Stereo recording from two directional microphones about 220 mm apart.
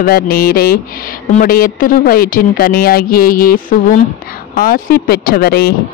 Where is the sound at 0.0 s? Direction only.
40° left (ahead or behind).